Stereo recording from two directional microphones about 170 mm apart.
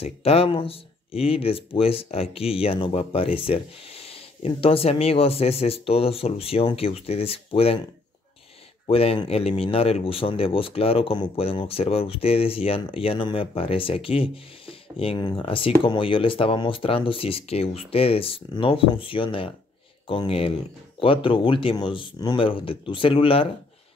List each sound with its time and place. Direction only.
0.0 s speech: 35° left (ahead or behind)
8.8 s speech: 35° left (ahead or behind)